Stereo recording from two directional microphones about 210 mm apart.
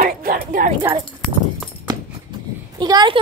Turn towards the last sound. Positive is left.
turn(degrees=-20)  # may be behind; listen again after turning